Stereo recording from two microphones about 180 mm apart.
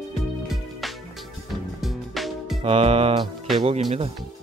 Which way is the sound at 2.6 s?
35° right (ahead or behind).